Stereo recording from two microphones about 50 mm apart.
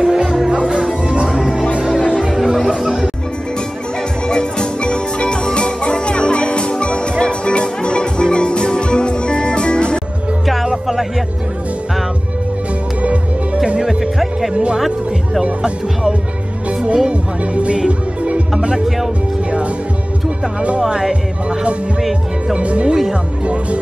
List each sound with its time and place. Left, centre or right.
0.0 s music: centre
2.5 s music: centre
4.3 s music: centre
10.4 s music: centre
13.8 s music: centre
14.5 s music: right
20.9 s music: centre